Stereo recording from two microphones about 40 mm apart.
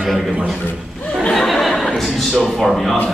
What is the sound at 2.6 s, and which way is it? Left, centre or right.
Speech, centre.